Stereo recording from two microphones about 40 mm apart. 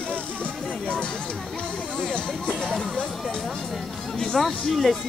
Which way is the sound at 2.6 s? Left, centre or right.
Centre.